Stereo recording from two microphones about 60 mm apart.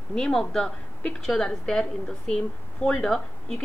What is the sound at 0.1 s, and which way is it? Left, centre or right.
Speech, centre.